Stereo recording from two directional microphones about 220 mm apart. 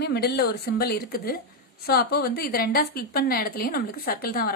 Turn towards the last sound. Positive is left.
turn(degrees=40)  # may be behind; listen again after turning